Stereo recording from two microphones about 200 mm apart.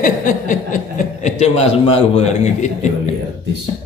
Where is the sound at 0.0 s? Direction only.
40° left (ahead or behind).